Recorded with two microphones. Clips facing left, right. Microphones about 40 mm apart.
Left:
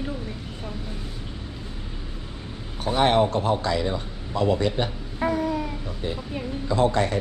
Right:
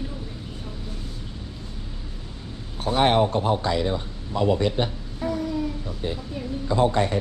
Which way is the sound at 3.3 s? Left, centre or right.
Right.